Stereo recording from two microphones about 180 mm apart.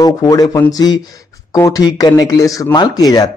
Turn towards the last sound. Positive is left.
turn(degrees=20)  # may be behind; listen again after turning